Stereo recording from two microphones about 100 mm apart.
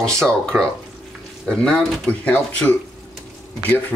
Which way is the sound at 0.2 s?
5° left (ahead or behind).